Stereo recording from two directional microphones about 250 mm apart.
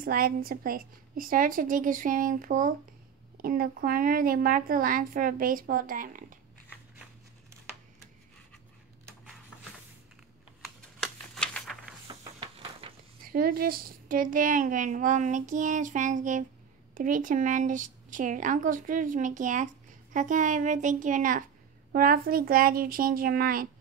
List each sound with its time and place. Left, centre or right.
0.0 s a woman's voice: right
10.6 s typewriter: centre
12.1 s music: right
13.3 s a woman's voice: right